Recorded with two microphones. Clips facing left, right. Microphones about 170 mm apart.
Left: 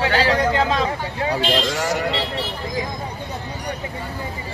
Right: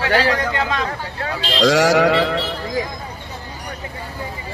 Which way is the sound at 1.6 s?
90° right.